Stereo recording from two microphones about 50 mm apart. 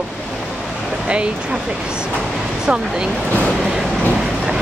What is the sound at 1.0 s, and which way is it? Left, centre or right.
Speech, centre.